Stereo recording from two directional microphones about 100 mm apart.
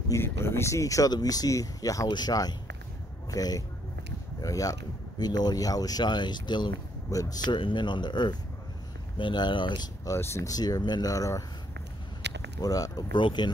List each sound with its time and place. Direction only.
0.1 s speech: 25° left (ahead or behind); by 6.7 s 50° left (ahead or behind)
7.1 s speech: 35° left (ahead or behind)
7.5 s speech: 55° left (ahead or behind)
10.0 s speech: 25° left (ahead or behind)
12.5 s speech: 40° left (ahead or behind)
13.1 s speech: 50° left (ahead or behind)